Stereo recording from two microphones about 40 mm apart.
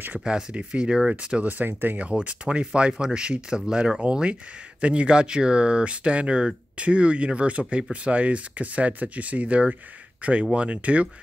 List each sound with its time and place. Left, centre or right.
0.2 s speech: right
1.7 s speech: right
2.0 s speech: right